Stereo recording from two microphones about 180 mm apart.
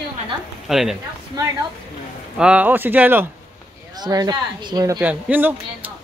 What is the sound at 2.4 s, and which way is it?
Speech, 5° right (ahead or behind).